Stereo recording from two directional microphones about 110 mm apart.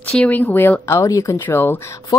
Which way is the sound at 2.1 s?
30° left (ahead or behind).